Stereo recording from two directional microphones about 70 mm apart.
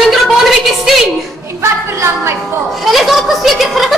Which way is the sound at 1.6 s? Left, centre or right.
Right.